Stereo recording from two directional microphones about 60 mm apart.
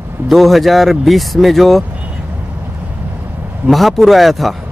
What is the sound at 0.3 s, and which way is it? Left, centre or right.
Speech, centre.